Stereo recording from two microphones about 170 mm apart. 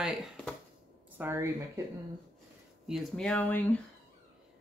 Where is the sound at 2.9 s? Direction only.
5° left (ahead or behind).